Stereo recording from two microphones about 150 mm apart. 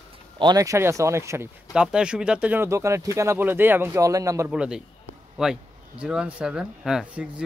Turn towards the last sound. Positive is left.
turn(degrees=-5)  # may be behind; listen again after turning